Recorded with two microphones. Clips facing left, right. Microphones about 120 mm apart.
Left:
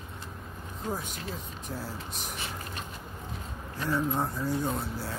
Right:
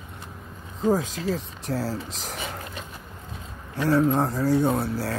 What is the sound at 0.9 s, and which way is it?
Speech, 90° right.